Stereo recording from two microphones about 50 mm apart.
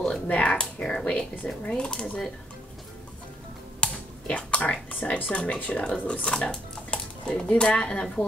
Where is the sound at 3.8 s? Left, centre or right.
Left.